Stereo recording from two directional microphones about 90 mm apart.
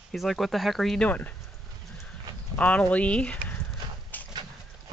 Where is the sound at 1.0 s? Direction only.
15° left (ahead or behind).